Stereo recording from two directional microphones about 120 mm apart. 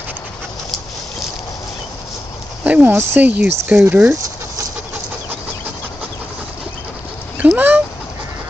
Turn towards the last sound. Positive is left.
turn(degrees=-15)  # may be behind; listen again after turning